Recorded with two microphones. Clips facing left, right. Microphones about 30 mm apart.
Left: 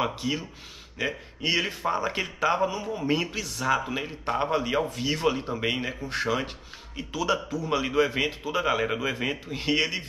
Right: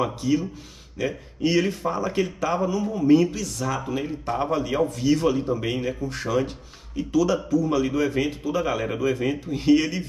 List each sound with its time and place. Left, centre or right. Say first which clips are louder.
0.0 s speech: right 5 dB; left